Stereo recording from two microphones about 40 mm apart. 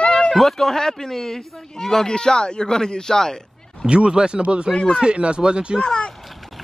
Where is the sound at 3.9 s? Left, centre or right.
Right.